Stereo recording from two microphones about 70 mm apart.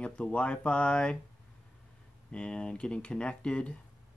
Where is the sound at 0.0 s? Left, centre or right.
Centre.